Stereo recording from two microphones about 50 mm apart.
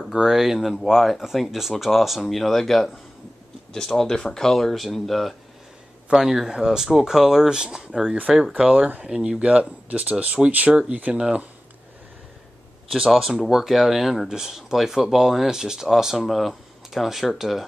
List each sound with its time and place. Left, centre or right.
0.1 s speech: centre
6.1 s speech: centre
8.7 s speech: right
13.1 s speech: centre